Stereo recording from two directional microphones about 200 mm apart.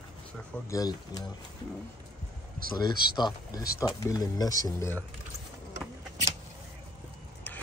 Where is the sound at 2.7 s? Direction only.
20° left (ahead or behind).